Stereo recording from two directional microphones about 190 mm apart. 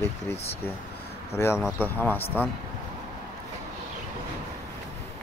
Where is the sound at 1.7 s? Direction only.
10° left (ahead or behind).